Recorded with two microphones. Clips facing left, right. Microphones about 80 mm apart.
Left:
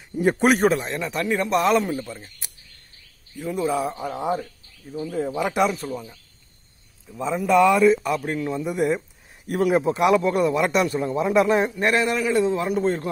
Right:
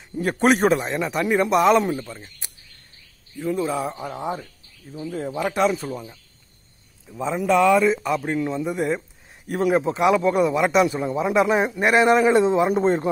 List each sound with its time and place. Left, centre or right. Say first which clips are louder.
0.1 s a man's voice: left 2 dB; centre
0.5 s a man's voice: right 4 dB; centre
11.7 s a man's voice: right 5 dB; centre